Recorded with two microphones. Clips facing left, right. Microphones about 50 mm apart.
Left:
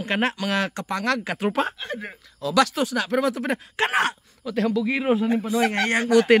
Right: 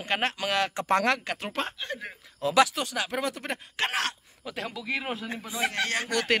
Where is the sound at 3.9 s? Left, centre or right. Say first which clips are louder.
Left 9 dB; left.